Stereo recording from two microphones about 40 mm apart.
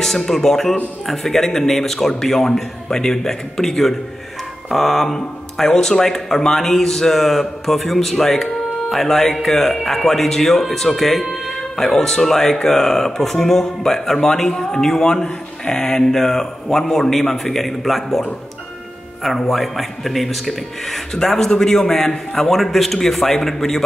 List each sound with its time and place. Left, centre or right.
0.0 s a man's voice: centre
15.2 s speech: left
15.8 s a man's voice: centre
19.2 s a man's voice: centre